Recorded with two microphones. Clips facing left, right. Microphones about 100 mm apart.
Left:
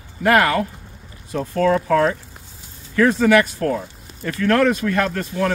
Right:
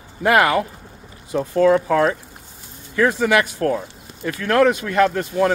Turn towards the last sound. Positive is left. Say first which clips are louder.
# right 4 dB
turn(degrees=-20)  # may be behind; listen again after turning